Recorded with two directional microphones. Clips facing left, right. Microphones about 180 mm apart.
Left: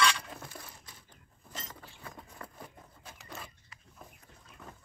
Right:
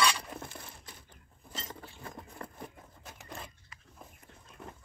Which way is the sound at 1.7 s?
25° right (ahead or behind).